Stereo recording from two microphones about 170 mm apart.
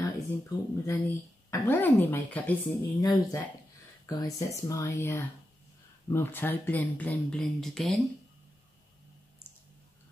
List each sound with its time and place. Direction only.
0.0 s speech: 15° left (ahead or behind); by 8.0 s centre (ahead or behind)